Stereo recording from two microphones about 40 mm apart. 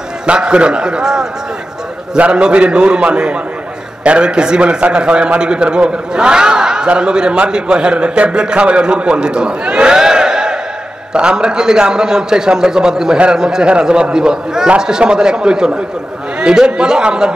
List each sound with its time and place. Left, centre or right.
0.3 s a man's voice: right